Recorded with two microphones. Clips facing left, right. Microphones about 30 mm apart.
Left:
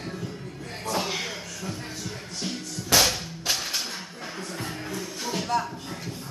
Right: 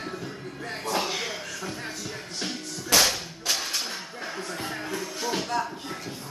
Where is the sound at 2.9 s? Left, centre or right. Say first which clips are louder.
Even; centre.